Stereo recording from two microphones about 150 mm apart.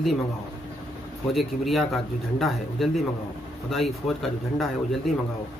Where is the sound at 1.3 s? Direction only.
Centre (ahead or behind).